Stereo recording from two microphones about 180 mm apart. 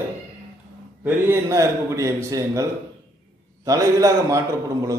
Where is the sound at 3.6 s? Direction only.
15° right (ahead or behind).